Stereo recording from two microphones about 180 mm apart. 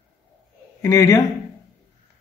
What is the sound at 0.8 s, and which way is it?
Speech, 15° left (ahead or behind).